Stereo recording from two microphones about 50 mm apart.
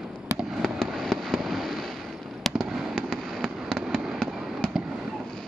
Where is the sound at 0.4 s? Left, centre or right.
Centre.